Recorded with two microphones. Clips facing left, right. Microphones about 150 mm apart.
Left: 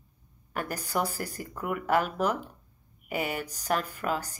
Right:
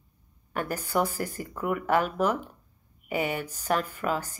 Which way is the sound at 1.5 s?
45° right (ahead or behind).